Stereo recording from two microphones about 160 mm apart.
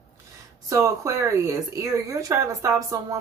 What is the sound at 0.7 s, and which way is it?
Speech, 20° right (ahead or behind).